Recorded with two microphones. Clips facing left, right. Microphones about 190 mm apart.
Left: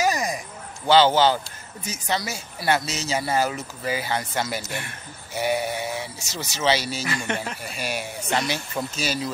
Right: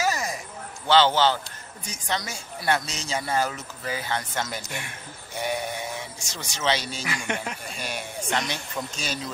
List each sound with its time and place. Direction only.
0.0 s a sound: 15° left (ahead or behind)
0.8 s speech: 10° left (ahead or behind)
4.6 s speech: 15° right (ahead or behind)
5.3 s speech: 5° left (ahead or behind)
7.1 s speech: 10° right (ahead or behind)
7.6 s speech: 5° left (ahead or behind)